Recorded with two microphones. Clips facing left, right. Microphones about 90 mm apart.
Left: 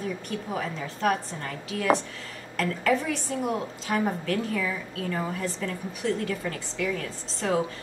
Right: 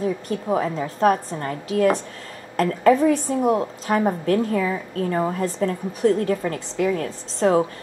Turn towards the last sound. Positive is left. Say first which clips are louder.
# right 8 dB
turn(degrees=-40)  # may be behind; listen again after turning